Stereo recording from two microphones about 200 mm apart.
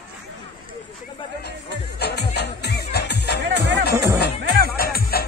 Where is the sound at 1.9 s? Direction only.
55° left (ahead or behind).